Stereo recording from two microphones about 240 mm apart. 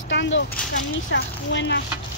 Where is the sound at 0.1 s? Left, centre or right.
Left.